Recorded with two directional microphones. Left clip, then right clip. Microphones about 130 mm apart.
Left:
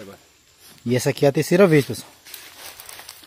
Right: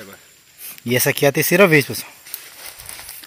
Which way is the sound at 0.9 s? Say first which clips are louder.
Right 2 dB; 20° left (ahead or behind).